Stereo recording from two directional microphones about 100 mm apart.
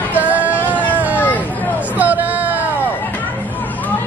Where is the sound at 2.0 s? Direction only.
15° right (ahead or behind).